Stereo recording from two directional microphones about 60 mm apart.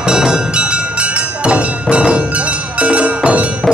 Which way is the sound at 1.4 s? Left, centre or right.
Centre.